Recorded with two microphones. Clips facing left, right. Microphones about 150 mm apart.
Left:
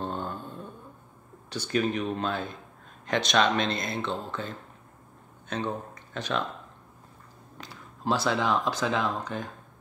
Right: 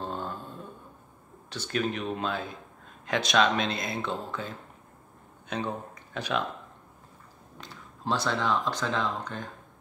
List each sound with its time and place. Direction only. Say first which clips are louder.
0.0 s a sound: left 2 dB; centre (ahead or behind)
1.5 s speech: left 3 dB; centre (ahead or behind)
6.1 s speech: even; 5° right (ahead or behind)
7.5 s speech: left 1 dB; 5° left (ahead or behind)